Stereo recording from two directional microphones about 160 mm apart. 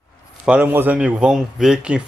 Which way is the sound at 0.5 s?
10° right (ahead or behind).